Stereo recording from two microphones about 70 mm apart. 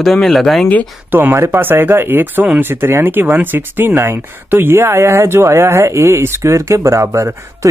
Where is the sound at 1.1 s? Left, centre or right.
Right.